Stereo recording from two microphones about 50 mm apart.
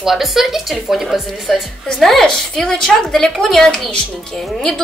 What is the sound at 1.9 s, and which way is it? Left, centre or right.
A woman's voice, centre.